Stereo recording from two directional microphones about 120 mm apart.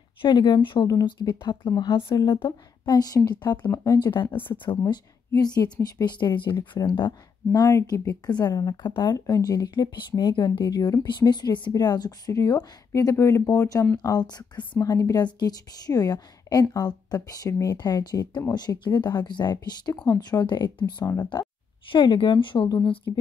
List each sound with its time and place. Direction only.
0.2 s speech: 35° left (ahead or behind)
4.3 s speech: 15° left (ahead or behind)
4.6 s speech: 40° left (ahead or behind)
7.6 s speech: 25° left (ahead or behind)
8.3 s speech: 35° left (ahead or behind)